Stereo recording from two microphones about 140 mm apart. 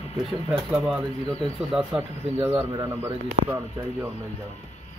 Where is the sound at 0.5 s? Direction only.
5° right (ahead or behind).